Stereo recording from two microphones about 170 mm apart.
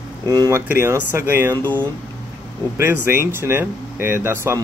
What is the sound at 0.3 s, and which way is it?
Speech, 20° right (ahead or behind).